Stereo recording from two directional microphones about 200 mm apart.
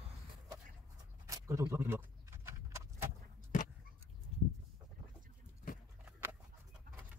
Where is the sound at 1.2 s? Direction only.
15° right (ahead or behind).